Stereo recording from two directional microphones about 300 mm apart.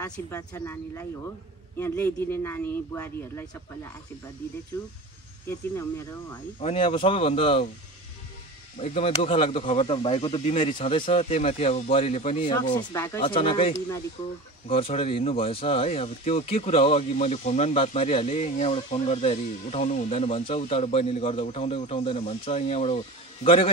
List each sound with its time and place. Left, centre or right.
0.0 s speech: centre
6.6 s speech: centre
8.7 s speech: centre